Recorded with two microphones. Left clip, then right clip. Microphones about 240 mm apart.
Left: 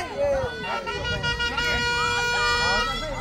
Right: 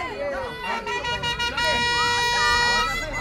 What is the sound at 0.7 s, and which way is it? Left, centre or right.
Vehicle, right.